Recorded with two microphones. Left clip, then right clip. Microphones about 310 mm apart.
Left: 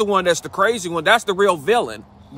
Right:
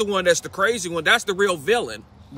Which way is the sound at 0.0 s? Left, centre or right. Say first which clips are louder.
Left 2 dB; centre.